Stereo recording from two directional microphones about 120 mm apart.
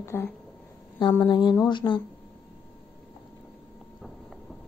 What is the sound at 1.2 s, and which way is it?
Speech, 35° left (ahead or behind).